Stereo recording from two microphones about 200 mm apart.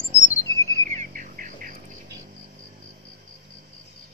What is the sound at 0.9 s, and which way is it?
Insect, 40° right (ahead or behind).